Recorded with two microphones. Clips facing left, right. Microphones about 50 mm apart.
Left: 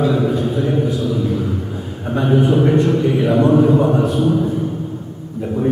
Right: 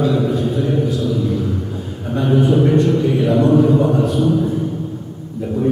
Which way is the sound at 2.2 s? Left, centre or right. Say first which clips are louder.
Even; centre.